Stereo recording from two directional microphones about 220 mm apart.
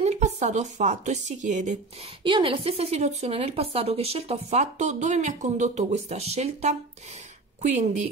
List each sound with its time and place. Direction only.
0.0 s a woman's voice: 30° right (ahead or behind)
2.2 s a woman's voice: 25° right (ahead or behind)